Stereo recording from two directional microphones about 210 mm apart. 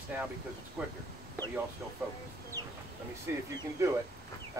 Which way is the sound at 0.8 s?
5° right (ahead or behind).